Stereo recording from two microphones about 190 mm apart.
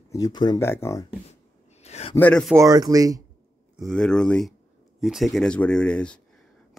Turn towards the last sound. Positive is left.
turn(degrees=5)  # may be behind; listen again after turning